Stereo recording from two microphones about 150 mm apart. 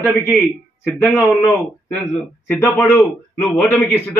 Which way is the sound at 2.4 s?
15° left (ahead or behind).